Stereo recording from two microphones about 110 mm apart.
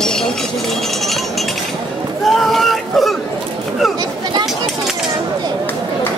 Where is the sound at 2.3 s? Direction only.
Centre (ahead or behind).